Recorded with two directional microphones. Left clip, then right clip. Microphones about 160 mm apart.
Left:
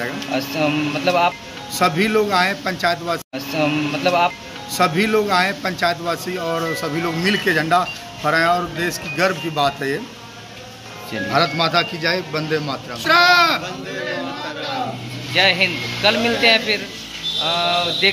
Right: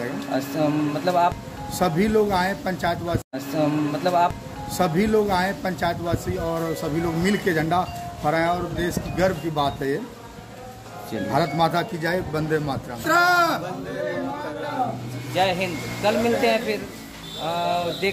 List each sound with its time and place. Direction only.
0.3 s speech: centre (ahead or behind)
1.7 s a man's voice: 25° right (ahead or behind)
3.5 s speech: centre (ahead or behind)
4.7 s a man's voice: 25° right (ahead or behind)
6.4 s speech: centre (ahead or behind)
7.2 s a man's voice: 25° right (ahead or behind)
11.5 s a man's voice: 30° right (ahead or behind)
15.3 s speech: 5° left (ahead or behind)